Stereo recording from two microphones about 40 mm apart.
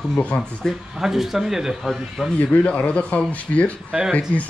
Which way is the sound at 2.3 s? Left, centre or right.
Left.